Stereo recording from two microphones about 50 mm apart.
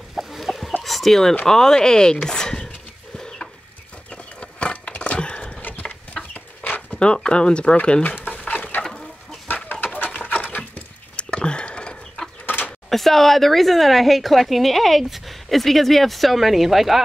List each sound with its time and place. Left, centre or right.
0.1 s chicken: centre
1.4 s speech: centre
3.2 s chicken: centre
4.1 s a sound: left
5.6 s a sound: left
6.3 s chicken: left
7.2 s speech: centre
8.0 s speech: left
8.8 s chicken: centre
9.9 s a sound: left
11.2 s chicken: centre
12.4 s a sound: left
12.9 s a woman's voice: centre